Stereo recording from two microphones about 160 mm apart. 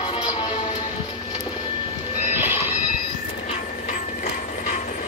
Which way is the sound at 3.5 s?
55° left (ahead or behind).